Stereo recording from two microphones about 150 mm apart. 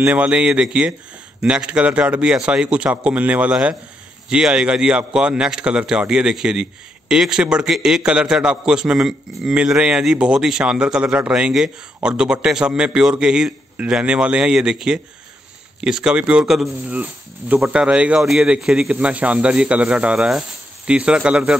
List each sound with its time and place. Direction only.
0.0 s a man's voice: 10° right (ahead or behind)